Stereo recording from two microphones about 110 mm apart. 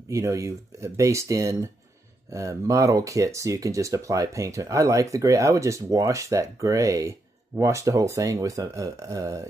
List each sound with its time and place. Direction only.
0.1 s speech: 30° right (ahead or behind)